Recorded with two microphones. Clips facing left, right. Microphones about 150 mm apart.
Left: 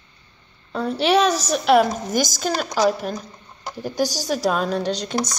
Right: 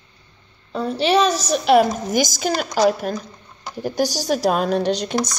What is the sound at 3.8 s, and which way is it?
Speech, 15° right (ahead or behind).